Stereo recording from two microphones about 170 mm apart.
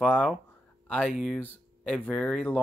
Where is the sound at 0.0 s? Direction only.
5° left (ahead or behind).